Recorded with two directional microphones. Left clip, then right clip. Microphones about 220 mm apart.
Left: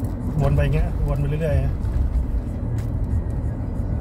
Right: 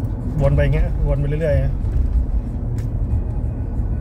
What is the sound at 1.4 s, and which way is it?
Speech, 25° right (ahead or behind).